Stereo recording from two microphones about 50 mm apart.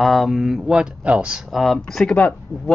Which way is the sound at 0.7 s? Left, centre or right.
Right.